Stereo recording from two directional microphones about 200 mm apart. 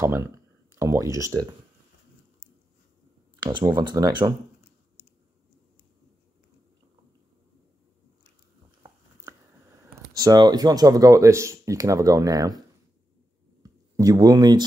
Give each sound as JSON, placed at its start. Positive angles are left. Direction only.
{"t": 0.0, "sound": "speech", "side_deg": -15}
{"t": 3.3, "sound": "speech", "side_deg": -20}
{"t": 9.8, "sound": "speech", "side_deg": -15}
{"t": 13.6, "sound": "a sound", "side_deg": -15}